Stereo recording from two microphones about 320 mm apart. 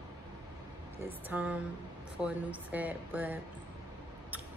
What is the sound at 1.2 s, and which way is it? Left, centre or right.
Speech, centre.